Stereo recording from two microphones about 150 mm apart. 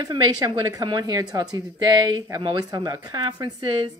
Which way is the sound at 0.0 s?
30° right (ahead or behind).